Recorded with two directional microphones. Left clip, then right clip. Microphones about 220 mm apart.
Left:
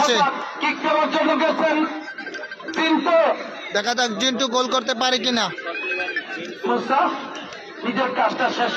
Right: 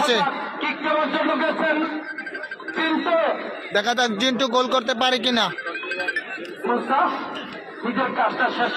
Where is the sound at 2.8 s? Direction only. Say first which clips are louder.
Left 3 dB; 35° left (ahead or behind).